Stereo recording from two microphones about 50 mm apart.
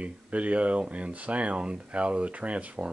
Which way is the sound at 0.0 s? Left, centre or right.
Right.